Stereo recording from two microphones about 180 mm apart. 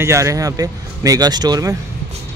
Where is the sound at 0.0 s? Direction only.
15° right (ahead or behind).